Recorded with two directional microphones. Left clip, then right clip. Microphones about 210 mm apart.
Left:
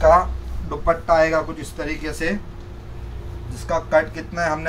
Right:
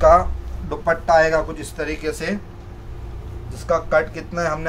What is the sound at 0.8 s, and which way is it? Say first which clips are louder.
Speech: right 1 dB; 50° right (ahead or behind).